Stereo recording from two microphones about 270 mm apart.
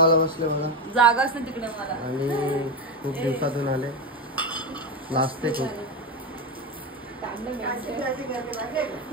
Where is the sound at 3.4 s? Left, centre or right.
Centre.